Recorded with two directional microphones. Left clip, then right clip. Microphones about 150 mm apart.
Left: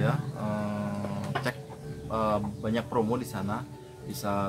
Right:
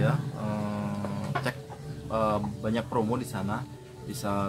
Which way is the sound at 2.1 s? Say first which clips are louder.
Right 1 dB; 20° left (ahead or behind).